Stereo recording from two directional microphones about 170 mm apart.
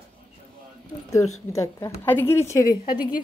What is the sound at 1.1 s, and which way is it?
A woman's voice, 20° left (ahead or behind).